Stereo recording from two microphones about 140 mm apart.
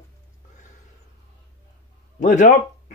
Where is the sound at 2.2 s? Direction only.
65° left (ahead or behind).